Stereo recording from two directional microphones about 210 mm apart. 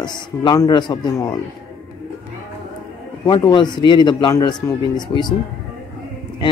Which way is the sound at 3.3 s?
20° left (ahead or behind).